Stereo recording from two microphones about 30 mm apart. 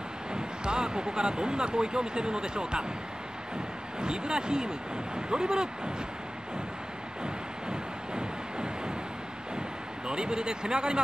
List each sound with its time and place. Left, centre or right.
0.3 s speech: right
4.0 s speech: right
7.2 s a sound: right
10.0 s speech: right